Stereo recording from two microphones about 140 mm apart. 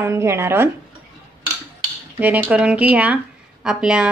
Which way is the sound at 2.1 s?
10° right (ahead or behind).